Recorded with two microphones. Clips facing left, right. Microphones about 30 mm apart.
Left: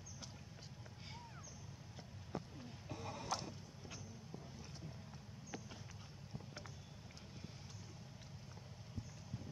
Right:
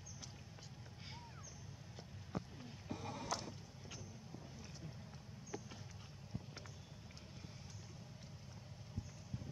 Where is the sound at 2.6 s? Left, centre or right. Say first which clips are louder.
Right 2 dB; centre.